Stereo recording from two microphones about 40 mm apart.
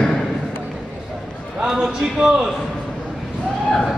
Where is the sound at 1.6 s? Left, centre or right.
Centre.